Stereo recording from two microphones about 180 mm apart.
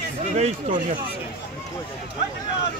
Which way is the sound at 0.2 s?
40° right (ahead or behind).